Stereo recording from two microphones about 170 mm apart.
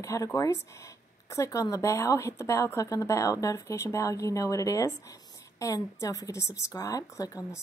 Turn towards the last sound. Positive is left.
turn(degrees=20)  # may be behind; listen again after turning